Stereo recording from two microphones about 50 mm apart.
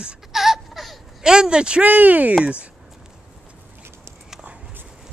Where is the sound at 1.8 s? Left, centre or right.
Right.